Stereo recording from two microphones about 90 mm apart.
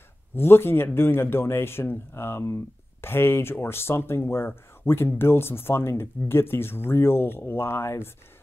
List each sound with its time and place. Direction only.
0.4 s speech: 25° left (ahead or behind)